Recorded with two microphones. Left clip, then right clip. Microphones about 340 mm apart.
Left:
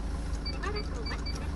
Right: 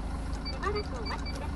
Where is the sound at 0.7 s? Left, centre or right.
Right.